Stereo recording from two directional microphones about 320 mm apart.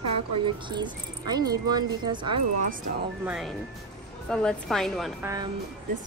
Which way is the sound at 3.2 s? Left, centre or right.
Centre.